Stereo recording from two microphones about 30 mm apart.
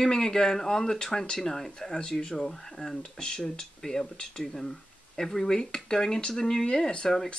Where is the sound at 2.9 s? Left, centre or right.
Left.